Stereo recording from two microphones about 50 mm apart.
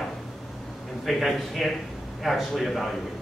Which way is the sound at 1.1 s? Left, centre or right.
Centre.